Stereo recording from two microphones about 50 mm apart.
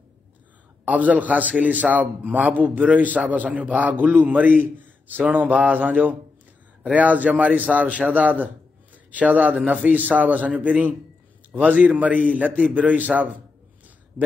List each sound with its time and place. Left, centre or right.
0.8 s a man's voice: right